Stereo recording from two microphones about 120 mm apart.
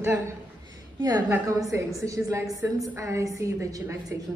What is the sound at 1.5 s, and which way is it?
A woman's voice, 30° right (ahead or behind).